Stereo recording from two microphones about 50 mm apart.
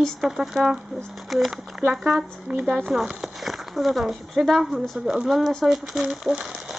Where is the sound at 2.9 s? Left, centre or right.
Centre.